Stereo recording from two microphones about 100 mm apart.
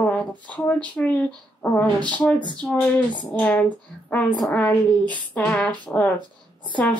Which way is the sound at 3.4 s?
15° left (ahead or behind).